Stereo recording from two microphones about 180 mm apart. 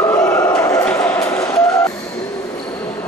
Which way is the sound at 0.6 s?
15° left (ahead or behind).